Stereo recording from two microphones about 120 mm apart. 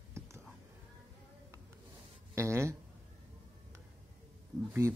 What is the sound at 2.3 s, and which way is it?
Speech, 25° right (ahead or behind).